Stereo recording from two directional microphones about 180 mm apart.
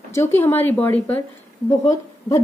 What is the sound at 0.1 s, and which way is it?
A woman's voice, 15° left (ahead or behind).